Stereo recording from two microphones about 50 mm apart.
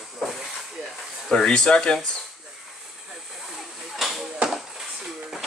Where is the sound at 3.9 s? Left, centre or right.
Centre.